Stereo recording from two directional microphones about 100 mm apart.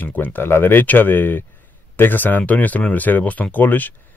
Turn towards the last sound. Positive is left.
turn(degrees=15)  # may be behind; listen again after turning